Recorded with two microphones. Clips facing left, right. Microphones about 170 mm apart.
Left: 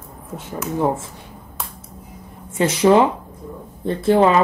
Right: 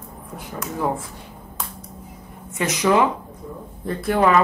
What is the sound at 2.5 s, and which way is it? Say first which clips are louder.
Speech: left 5 dB; 30° left (ahead or behind).